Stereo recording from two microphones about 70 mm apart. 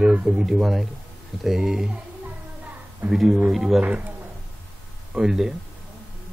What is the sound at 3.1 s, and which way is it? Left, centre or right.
Speech, centre.